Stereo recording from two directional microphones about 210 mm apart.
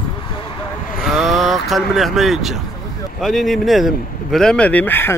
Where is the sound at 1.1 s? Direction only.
Centre (ahead or behind).